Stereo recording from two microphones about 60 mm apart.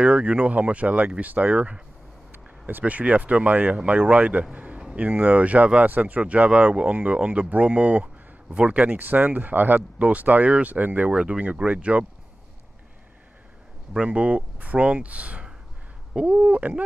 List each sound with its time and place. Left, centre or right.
0.0 s speech: centre
2.3 s a sound: right
2.8 s speech: right
13.9 s speech: centre